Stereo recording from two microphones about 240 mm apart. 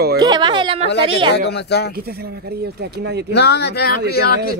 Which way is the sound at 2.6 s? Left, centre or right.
Right.